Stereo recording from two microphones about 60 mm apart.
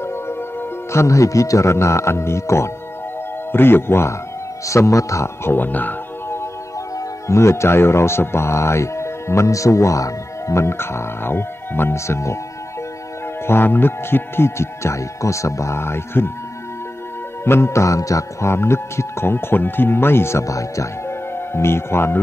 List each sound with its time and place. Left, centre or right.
0.9 s speech: left
3.5 s speech: left
4.6 s music: left
5.5 s speech: left
7.2 s speech: left
13.5 s speech: left
17.5 s music: left
18.5 s speech: left
20.4 s music: left
21.5 s speech: left